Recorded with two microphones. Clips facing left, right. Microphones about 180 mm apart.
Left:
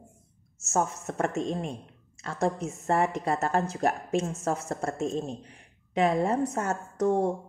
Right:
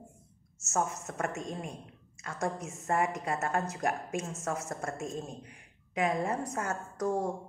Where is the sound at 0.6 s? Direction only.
30° left (ahead or behind).